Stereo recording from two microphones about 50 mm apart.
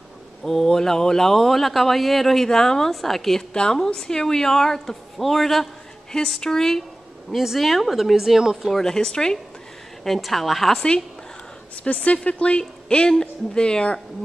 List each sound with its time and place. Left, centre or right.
0.4 s speech: centre
7.2 s speech: centre
8.7 s speech: centre
10.0 s speech: centre
11.8 s speech: left